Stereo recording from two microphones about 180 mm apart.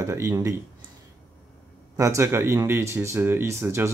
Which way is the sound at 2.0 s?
15° right (ahead or behind).